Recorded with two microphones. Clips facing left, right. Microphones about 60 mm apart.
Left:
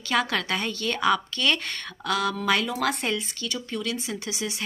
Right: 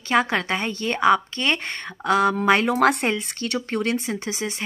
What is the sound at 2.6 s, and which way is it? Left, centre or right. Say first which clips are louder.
Speech: right 8 dB; right.